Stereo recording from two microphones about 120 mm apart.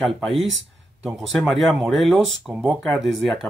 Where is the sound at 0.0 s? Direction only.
Centre (ahead or behind).